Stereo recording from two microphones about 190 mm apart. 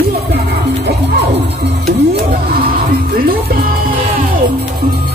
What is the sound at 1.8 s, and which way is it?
Music, 50° right (ahead or behind).